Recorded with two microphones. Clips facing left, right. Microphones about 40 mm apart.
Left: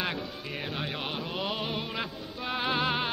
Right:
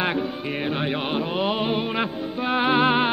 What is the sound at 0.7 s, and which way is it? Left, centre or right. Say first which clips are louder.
Music: right 9 dB; right.